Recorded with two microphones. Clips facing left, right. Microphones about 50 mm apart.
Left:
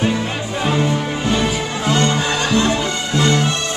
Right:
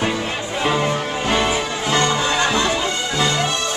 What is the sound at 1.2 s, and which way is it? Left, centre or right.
Music, right.